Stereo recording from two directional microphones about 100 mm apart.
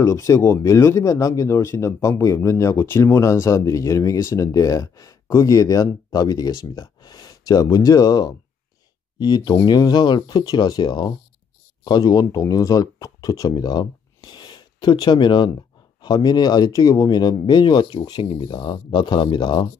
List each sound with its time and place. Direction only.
0.0 s speech: 30° left (ahead or behind); by 19.7 s 50° left (ahead or behind)